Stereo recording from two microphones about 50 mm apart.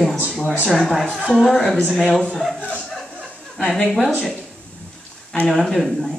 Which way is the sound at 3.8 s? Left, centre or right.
Centre.